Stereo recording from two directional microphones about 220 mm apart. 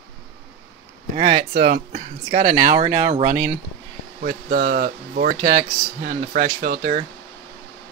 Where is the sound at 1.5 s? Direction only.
45° right (ahead or behind).